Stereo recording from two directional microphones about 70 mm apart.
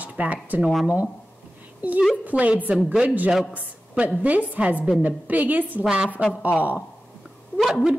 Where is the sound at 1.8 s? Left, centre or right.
Right.